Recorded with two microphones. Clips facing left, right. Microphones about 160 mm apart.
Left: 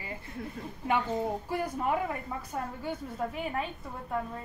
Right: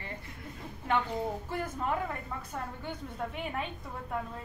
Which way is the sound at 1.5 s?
10° left (ahead or behind).